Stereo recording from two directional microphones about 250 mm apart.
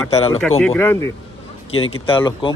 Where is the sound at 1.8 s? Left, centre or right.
Left.